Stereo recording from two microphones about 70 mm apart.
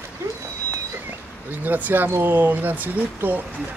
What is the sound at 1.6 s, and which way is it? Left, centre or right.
Speech, right.